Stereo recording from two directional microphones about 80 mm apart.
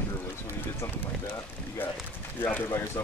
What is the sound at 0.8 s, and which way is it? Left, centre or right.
Speech, left.